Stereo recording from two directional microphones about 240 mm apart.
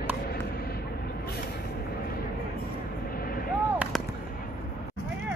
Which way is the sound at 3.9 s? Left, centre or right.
Centre.